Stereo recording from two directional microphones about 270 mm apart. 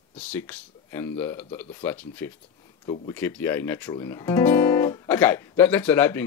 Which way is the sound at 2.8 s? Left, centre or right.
Left.